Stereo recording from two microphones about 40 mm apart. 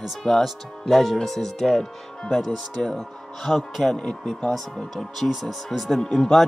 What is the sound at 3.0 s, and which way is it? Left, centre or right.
Speech, centre.